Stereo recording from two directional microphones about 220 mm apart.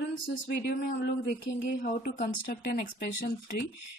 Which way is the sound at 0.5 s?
45° left (ahead or behind).